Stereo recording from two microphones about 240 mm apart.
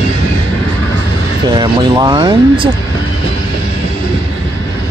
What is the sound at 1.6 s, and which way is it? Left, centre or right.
Speech, centre.